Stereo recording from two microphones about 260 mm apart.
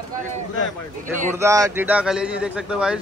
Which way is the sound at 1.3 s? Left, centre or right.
Centre.